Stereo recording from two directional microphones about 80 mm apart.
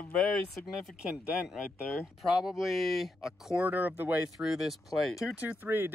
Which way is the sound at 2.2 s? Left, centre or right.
Centre.